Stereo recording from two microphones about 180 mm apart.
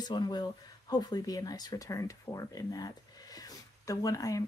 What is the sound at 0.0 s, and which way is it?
Speech, 25° left (ahead or behind).